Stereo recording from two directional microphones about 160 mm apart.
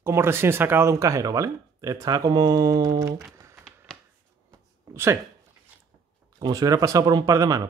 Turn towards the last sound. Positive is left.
turn(degrees=-20)  # may be behind; listen again after turning